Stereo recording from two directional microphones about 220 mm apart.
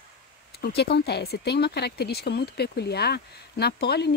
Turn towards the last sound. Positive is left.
turn(degrees=50)  # may be behind; listen again after turning